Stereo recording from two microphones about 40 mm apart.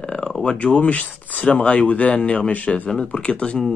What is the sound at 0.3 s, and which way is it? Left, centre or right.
Speech, left.